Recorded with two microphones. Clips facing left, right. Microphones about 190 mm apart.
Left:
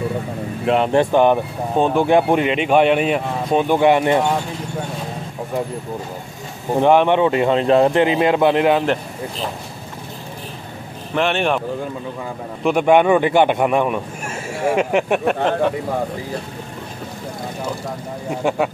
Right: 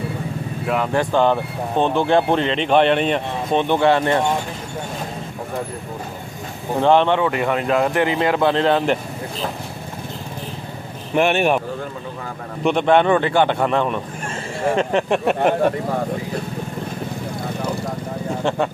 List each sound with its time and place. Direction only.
0.7 s speech: 25° left (ahead or behind)
6.8 s speech: 15° left (ahead or behind)
11.1 s speech: 10° right (ahead or behind)
12.6 s speech: 10° left (ahead or behind)
18.3 s speech: 10° left (ahead or behind)